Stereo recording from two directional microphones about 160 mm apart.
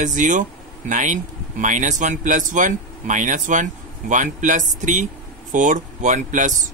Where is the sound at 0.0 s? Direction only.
50° right (ahead or behind).